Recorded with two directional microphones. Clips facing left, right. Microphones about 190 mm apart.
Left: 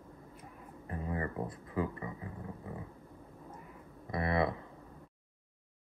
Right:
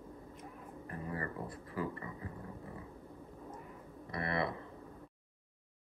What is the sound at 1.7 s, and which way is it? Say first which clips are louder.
Speech: left 3 dB; 20° left (ahead or behind).